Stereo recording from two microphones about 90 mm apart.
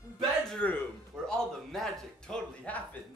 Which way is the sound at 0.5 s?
15° left (ahead or behind).